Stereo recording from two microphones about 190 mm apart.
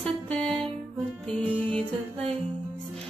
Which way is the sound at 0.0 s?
5° left (ahead or behind).